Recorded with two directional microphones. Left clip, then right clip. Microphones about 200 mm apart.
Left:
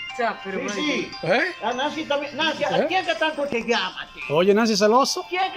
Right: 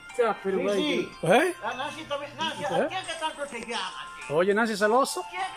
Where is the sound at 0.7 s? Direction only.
10° right (ahead or behind).